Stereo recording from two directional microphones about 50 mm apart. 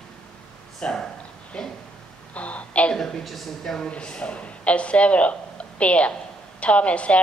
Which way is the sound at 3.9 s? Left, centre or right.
Left.